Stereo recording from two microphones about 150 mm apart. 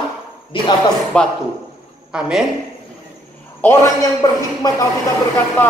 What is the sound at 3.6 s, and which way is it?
A man's voice, 20° left (ahead or behind).